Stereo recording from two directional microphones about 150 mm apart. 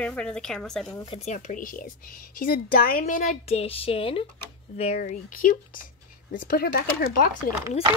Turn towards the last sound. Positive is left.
turn(degrees=80)